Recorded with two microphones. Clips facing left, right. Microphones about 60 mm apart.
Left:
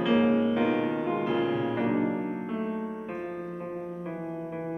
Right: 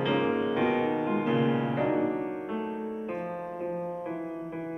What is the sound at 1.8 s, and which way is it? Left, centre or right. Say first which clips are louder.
Music: even; centre.